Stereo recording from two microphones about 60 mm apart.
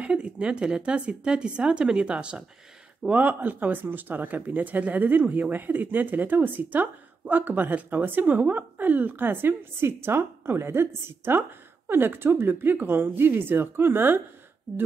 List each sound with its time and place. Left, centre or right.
0.0 s a woman's voice: centre
3.1 s speech: right